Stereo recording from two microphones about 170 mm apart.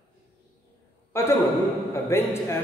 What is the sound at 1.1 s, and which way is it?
A man's voice, 15° left (ahead or behind).